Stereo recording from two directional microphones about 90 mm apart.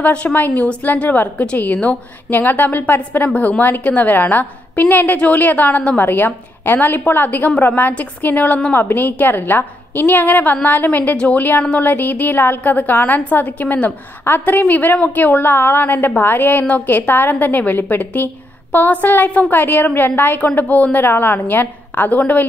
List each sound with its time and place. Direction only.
0.0 s a woman's voice: 15° left (ahead or behind)